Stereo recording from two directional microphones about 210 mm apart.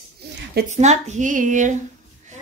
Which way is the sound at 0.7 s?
35° right (ahead or behind).